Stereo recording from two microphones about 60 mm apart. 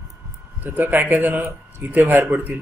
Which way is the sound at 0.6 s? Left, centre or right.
Right.